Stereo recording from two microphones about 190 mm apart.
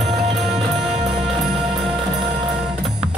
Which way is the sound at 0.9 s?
30° right (ahead or behind).